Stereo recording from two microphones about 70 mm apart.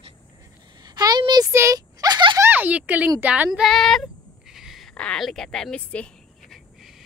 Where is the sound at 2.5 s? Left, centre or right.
Right.